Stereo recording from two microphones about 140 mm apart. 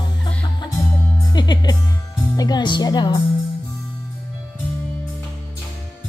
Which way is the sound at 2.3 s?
30° left (ahead or behind).